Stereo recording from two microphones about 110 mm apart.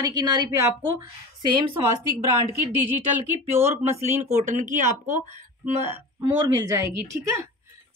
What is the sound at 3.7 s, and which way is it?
Speech, 90° right.